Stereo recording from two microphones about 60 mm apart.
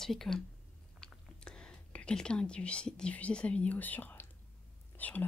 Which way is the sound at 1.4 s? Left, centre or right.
Centre.